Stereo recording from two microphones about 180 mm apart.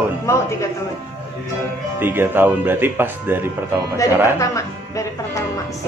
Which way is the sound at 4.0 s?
20° left (ahead or behind).